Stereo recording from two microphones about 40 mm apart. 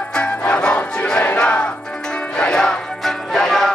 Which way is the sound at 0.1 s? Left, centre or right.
Left.